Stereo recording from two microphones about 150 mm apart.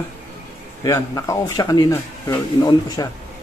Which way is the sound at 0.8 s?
20° left (ahead or behind).